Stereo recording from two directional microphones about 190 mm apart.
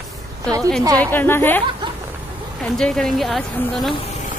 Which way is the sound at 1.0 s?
10° left (ahead or behind).